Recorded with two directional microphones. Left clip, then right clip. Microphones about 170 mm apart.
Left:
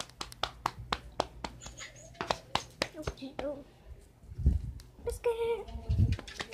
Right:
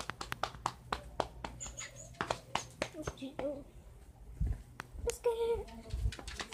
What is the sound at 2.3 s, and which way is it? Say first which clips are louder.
Music: left 7 dB; 45° left (ahead or behind).